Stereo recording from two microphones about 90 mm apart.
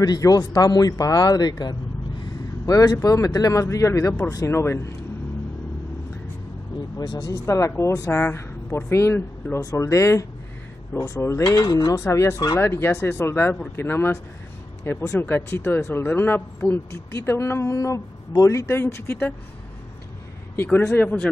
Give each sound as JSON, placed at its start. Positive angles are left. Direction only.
{"t": 0.0, "sound": "a man's voice", "side_deg": 45}
{"t": 2.7, "sound": "a woman's voice", "side_deg": 40}
{"t": 7.0, "sound": "a woman's voice", "side_deg": 45}
{"t": 9.6, "sound": "a woman's voice", "side_deg": 40}
{"t": 11.9, "sound": "a woman's voice", "side_deg": 35}
{"t": 15.1, "sound": "a woman's voice", "side_deg": 25}
{"t": 20.5, "sound": "speech", "side_deg": 20}